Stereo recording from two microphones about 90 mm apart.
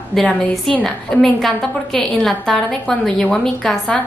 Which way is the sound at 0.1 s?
Centre (ahead or behind).